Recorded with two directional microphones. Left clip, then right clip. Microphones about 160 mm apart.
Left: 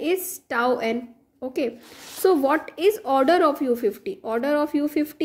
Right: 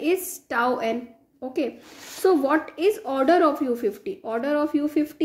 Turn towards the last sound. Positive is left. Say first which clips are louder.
# even
turn(degrees=40)  # may be behind; listen again after turning